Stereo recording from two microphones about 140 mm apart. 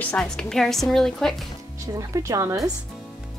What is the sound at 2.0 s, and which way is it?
Speech, 25° right (ahead or behind).